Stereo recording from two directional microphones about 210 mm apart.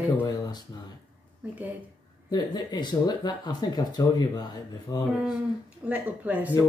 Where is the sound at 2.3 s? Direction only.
20° left (ahead or behind).